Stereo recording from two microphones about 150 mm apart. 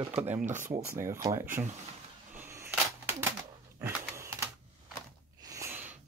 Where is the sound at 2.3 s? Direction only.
15° right (ahead or behind).